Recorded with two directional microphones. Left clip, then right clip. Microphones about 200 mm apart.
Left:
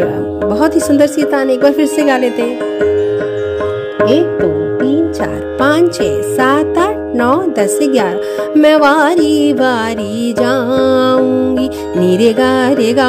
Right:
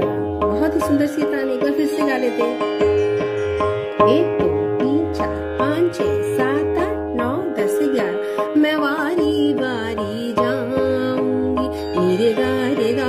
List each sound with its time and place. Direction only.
0.6 s a woman's voice: 55° left (ahead or behind)
7.8 s a woman's voice: 55° left (ahead or behind)
8.5 s music: 50° left (ahead or behind)
12.2 s music: 55° left (ahead or behind)